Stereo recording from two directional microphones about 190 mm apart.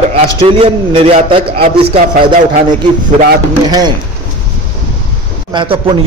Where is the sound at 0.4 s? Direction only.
30° right (ahead or behind).